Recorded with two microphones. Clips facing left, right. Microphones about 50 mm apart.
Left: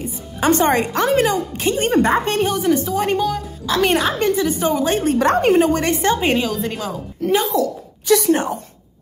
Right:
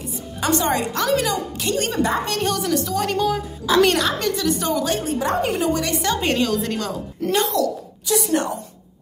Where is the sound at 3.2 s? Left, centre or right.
Centre.